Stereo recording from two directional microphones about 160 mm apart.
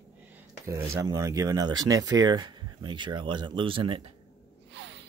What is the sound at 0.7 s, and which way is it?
Speech, 20° right (ahead or behind).